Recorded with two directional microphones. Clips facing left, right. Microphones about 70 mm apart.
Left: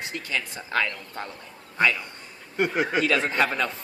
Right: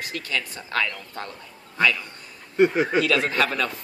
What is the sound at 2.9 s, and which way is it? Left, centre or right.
Speech, left.